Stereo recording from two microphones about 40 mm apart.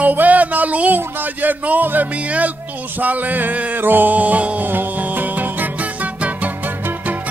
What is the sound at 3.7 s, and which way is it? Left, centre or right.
Music, right.